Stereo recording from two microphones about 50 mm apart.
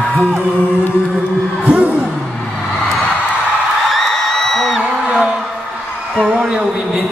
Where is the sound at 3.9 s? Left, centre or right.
Centre.